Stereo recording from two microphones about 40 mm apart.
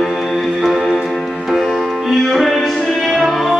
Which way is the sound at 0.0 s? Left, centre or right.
Centre.